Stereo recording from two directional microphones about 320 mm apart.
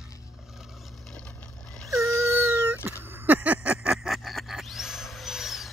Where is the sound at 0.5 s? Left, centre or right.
Centre.